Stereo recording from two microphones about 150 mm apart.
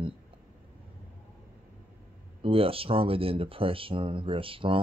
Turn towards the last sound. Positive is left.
turn(degrees=-35)  # may be behind; listen again after turning